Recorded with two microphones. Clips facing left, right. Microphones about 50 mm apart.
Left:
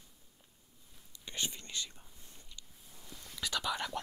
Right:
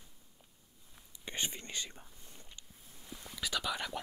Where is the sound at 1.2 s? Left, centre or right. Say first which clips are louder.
Right 1 dB; right.